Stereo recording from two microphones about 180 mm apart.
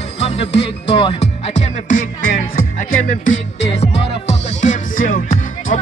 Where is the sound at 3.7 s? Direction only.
35° left (ahead or behind).